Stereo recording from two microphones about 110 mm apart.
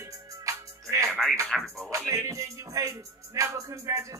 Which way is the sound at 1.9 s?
30° right (ahead or behind).